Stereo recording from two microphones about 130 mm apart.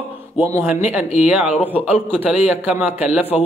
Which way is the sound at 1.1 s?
5° right (ahead or behind).